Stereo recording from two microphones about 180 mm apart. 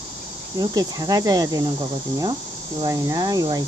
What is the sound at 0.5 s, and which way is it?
Speech, 20° right (ahead or behind).